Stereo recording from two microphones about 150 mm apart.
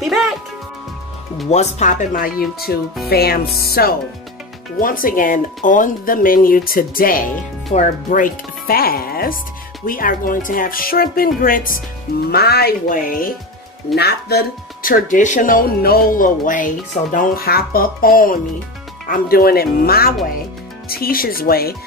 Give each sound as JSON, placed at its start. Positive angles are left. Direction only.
{"t": 0.0, "sound": "music", "side_deg": 0}
{"t": 1.5, "sound": "speech", "side_deg": 50}
{"t": 2.7, "sound": "speech", "side_deg": 90}
{"t": 4.7, "sound": "speech", "side_deg": 70}
{"t": 12.3, "sound": "speech", "side_deg": 90}
{"t": 13.9, "sound": "speech", "side_deg": 90}